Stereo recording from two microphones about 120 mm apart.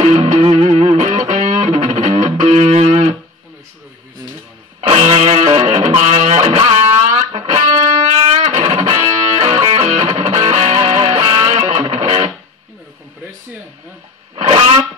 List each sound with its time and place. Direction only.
0.0 s music: 65° right (ahead or behind)
4.8 s music: 60° right (ahead or behind)